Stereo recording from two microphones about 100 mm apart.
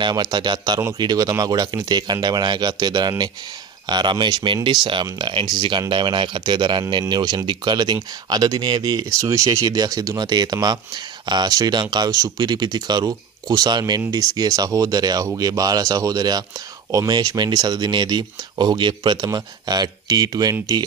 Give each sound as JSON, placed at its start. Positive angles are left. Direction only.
{"t": 0.0, "sound": "speech", "side_deg": -45}